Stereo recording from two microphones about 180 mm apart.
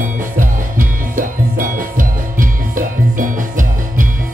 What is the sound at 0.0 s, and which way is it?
Music, 50° right (ahead or behind).